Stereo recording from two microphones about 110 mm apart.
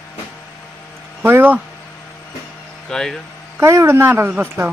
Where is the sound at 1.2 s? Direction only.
20° right (ahead or behind).